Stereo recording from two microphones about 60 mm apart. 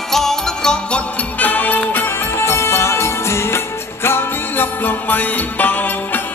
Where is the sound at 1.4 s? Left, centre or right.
Left.